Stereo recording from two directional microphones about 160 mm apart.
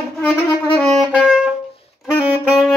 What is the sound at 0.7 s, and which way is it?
Saxophone, 5° left (ahead or behind).